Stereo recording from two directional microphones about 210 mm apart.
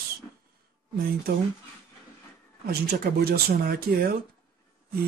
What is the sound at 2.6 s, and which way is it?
Speech, 45° right (ahead or behind).